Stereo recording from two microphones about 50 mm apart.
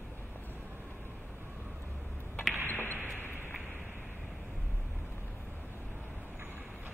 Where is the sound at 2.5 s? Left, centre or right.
Right.